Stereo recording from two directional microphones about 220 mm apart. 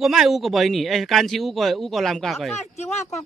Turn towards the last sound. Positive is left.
turn(degrees=30)  # may be behind; listen again after turning